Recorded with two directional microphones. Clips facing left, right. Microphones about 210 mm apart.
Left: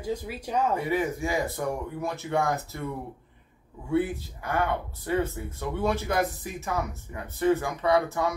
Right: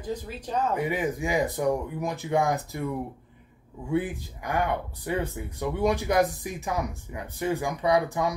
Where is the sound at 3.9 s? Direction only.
15° right (ahead or behind).